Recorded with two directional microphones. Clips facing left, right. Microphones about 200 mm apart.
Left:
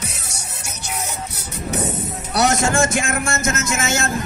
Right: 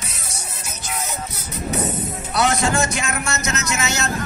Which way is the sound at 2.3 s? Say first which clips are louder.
Left 2 dB; 45° left (ahead or behind).